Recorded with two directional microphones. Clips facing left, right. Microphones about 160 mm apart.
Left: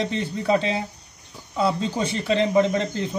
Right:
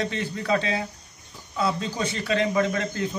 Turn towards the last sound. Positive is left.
turn(degrees=25)  # may be behind; listen again after turning